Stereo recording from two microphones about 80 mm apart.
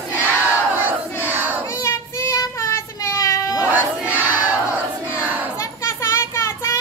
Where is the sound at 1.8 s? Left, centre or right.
Left.